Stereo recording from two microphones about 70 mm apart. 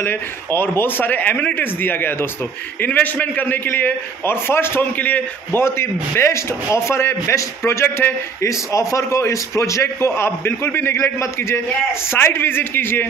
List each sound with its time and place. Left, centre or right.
0.0 s speech: left
4.9 s speech: left
5.6 s a man's voice: left